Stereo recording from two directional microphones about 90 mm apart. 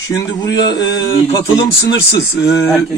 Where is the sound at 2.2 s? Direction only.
25° left (ahead or behind).